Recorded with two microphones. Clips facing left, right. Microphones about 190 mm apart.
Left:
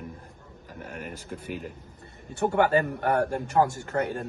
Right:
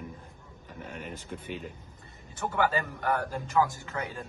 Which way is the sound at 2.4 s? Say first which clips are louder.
Left 6 dB; 60° left (ahead or behind).